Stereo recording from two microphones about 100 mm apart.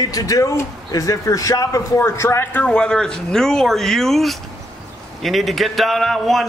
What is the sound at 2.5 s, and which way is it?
Speech, 10° left (ahead or behind).